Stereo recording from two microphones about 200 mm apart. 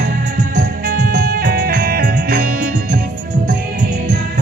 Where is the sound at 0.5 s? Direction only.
45° right (ahead or behind).